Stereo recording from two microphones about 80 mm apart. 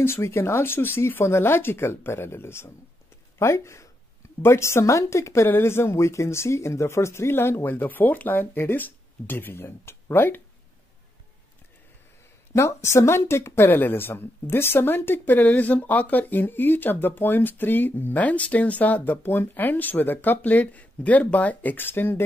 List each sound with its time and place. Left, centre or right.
0.0 s speech: left
12.5 s speech: left